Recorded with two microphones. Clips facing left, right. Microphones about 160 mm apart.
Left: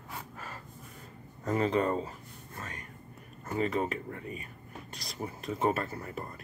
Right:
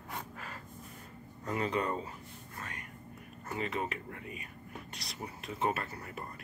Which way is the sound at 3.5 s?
35° left (ahead or behind).